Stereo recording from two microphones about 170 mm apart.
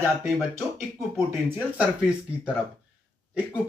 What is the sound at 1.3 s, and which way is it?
Speech, 10° right (ahead or behind).